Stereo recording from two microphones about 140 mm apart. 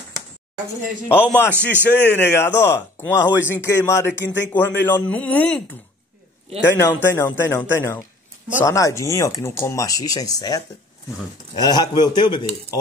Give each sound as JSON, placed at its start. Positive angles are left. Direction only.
{"t": 1.0, "sound": "a man's voice", "side_deg": 10}